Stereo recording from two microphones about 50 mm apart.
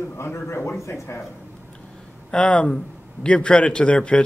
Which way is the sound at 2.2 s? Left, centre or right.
Left.